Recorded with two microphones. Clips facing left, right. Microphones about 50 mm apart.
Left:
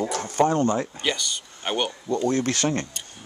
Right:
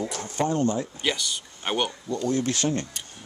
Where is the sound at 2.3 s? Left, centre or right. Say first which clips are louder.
Left 2 dB; left.